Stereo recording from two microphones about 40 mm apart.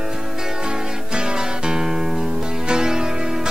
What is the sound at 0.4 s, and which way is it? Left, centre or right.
Music, centre.